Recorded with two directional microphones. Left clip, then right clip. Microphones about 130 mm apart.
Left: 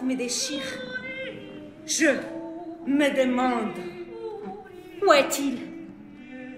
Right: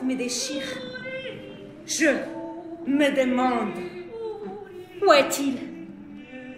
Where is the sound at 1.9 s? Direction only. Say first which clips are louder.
Even; 30° left (ahead or behind).